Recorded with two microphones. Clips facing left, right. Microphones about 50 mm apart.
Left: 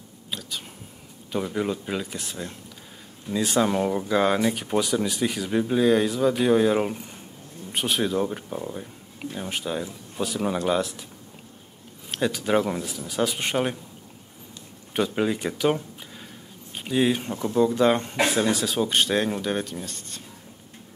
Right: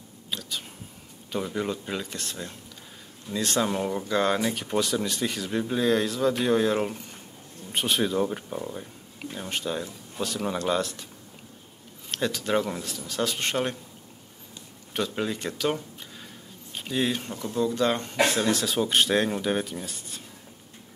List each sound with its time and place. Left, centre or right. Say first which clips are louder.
0.3 s a sound: even; centre
1.3 s speech: left 3 dB; centre
12.1 s speech: left 3 dB; centre
15.0 s speech: left 5 dB; centre